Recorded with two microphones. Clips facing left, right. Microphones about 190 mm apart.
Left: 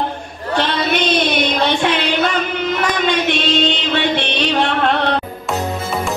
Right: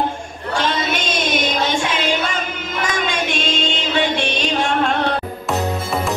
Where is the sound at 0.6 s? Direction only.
45° right (ahead or behind).